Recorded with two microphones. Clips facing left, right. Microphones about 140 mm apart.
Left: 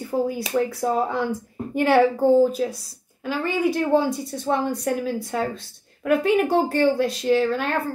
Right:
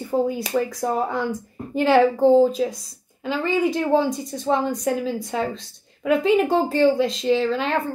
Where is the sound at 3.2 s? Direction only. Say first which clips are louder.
Right 1 dB; 10° left (ahead or behind).